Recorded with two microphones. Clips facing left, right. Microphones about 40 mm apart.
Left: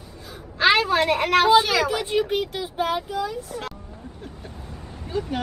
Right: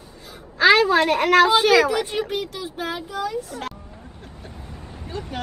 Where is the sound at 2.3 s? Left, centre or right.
Left.